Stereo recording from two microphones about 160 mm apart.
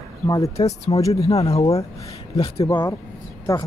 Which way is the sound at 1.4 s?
40° left (ahead or behind).